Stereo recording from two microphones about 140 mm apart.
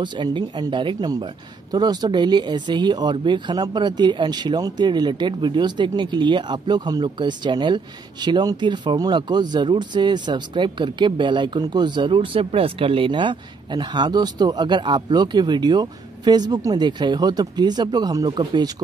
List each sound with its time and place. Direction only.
0.0 s speech: 35° right (ahead or behind)